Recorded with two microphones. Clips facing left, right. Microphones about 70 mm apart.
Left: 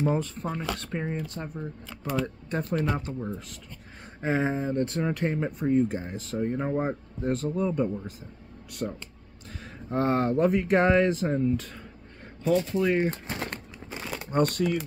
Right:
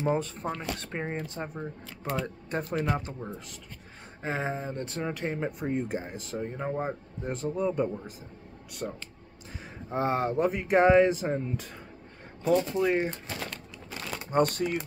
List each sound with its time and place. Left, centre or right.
0.0 s speech: centre
2.2 s speech: centre
4.2 s speech: centre
4.7 s speech: centre
5.7 s speech: centre
6.4 s speech: centre
7.2 s speech: centre
8.8 s speech: centre
13.3 s crumpling: left
14.3 s speech: right